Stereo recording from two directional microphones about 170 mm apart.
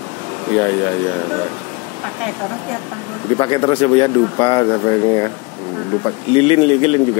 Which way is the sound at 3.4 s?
30° left (ahead or behind).